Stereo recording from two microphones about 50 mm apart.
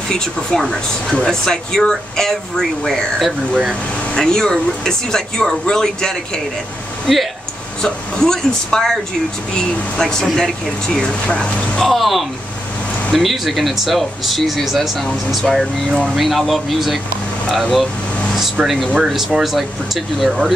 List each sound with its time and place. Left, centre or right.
0.1 s speech: centre
4.1 s speech: centre
7.8 s speech: centre
11.8 s speech: centre
18.6 s speech: centre